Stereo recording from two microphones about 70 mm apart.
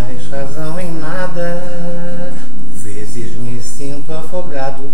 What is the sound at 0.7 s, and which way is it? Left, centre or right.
Mantra, centre.